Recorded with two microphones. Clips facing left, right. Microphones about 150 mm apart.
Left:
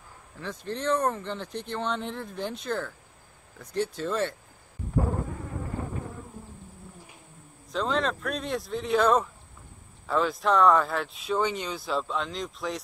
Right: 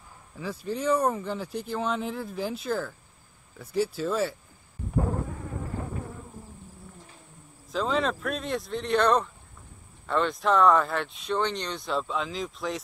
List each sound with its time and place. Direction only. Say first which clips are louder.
0.4 s speech: right 2 dB; 10° right (ahead or behind)
7.7 s speech: right 1 dB; centre (ahead or behind)